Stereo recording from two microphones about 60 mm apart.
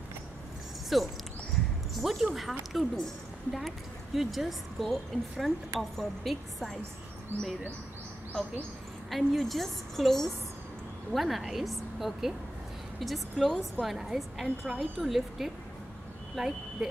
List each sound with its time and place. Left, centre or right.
0.9 s a woman's voice: centre
7.3 s speech: right
9.1 s a woman's voice: centre